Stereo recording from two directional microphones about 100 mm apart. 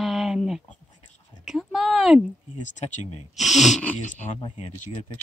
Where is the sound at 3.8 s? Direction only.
15° left (ahead or behind).